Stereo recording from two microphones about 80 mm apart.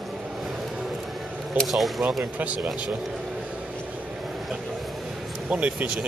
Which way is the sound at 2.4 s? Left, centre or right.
Centre.